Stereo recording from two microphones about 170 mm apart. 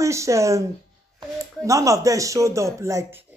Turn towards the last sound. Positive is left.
turn(degrees=-15)  # may be behind; listen again after turning